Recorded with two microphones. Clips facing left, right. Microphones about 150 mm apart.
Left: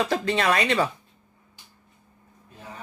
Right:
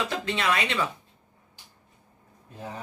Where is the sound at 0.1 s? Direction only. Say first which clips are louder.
Left 4 dB; 40° left (ahead or behind).